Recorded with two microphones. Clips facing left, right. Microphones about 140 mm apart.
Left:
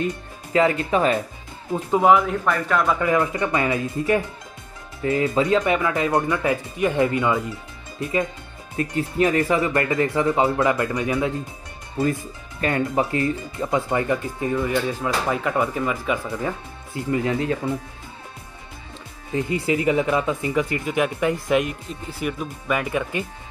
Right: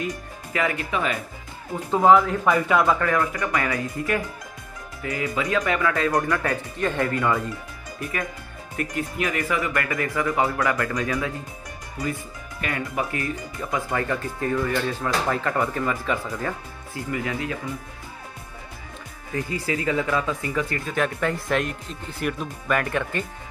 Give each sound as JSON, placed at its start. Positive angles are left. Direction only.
{"t": 0.0, "sound": "speech", "side_deg": 25}
{"t": 1.9, "sound": "speech", "side_deg": 10}
{"t": 2.4, "sound": "a man's voice", "side_deg": -5}
{"t": 3.0, "sound": "speech", "side_deg": 20}
{"t": 19.3, "sound": "speech", "side_deg": 25}